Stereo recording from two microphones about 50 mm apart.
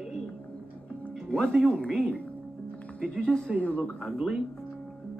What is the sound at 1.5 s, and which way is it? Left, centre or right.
Speech, right.